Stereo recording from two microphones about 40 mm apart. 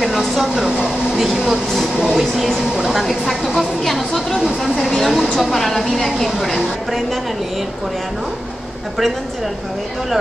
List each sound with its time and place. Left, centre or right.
0.0 s a sound: centre
0.6 s hair dryer: centre
1.1 s a woman's voice: centre
2.0 s speech: centre
2.3 s a woman's voice: centre
4.7 s a sound: centre
5.9 s a woman's voice: centre